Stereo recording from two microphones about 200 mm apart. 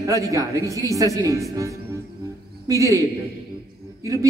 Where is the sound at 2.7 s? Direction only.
15° right (ahead or behind).